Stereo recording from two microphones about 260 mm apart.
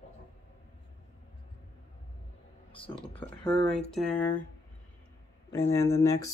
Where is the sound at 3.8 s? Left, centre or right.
Centre.